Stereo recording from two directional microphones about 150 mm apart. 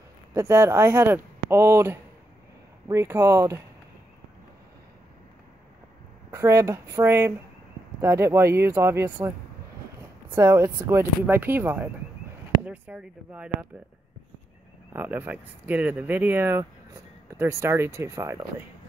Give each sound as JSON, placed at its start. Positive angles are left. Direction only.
{"t": 0.3, "sound": "speech", "side_deg": -15}
{"t": 6.3, "sound": "speech", "side_deg": -20}
{"t": 10.3, "sound": "speech", "side_deg": -20}
{"t": 14.9, "sound": "speech", "side_deg": -15}